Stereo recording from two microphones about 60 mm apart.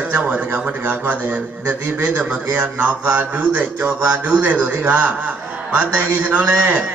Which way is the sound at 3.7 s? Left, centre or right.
Right.